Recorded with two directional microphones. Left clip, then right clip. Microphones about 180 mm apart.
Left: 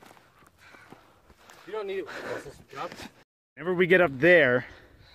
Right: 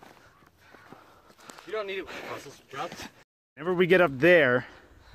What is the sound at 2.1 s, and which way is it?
Speech, 35° left (ahead or behind).